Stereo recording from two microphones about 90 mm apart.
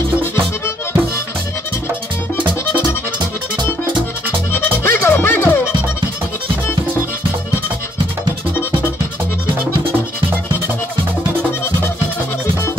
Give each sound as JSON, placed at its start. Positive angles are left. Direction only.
{"t": 0.2, "sound": "music", "side_deg": 30}
{"t": 4.5, "sound": "music", "side_deg": 25}